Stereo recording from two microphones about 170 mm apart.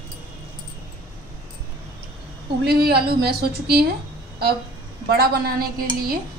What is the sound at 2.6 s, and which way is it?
A woman's voice, 70° right (ahead or behind).